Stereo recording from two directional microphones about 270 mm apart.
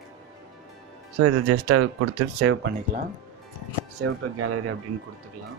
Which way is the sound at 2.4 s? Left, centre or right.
Right.